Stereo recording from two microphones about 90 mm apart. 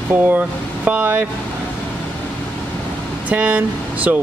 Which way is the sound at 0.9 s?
15° right (ahead or behind).